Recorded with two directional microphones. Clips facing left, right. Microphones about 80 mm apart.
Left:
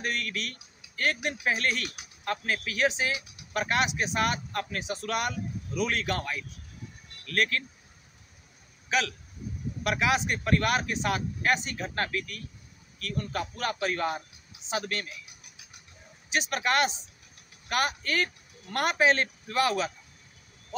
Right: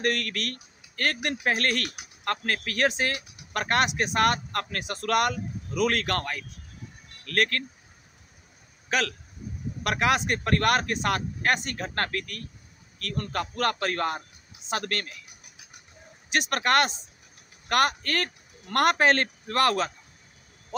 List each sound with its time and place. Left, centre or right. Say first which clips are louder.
0.0 s speech: right 5 dB; right
9.8 s speech: right 2 dB; right
16.3 s speech: right 3 dB; right